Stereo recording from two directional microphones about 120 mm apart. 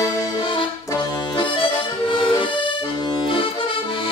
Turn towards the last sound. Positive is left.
turn(degrees=45)  # may be behind; listen again after turning